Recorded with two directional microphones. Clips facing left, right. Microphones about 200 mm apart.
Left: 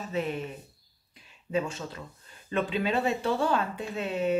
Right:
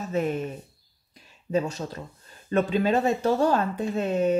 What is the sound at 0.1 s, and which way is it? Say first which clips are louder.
Speech: right 5 dB; 45° right (ahead or behind).